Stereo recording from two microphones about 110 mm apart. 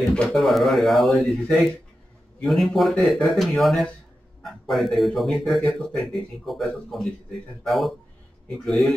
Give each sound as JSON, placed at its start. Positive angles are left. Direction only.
{"t": 0.1, "sound": "speech", "side_deg": 5}